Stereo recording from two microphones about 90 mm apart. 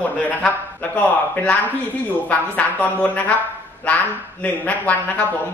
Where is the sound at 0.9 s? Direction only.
15° left (ahead or behind).